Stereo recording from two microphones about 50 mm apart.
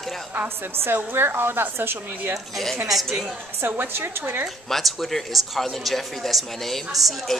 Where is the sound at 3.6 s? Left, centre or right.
Right.